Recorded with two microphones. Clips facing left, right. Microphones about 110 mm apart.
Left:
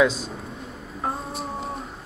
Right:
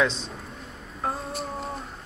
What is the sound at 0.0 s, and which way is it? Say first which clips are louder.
Speech: left 5 dB; 5° left (ahead or behind).